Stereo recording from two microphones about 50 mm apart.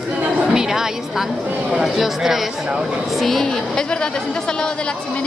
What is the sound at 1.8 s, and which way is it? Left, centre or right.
A woman's voice, centre.